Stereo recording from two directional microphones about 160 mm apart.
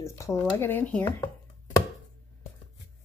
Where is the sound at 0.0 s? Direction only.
20° left (ahead or behind).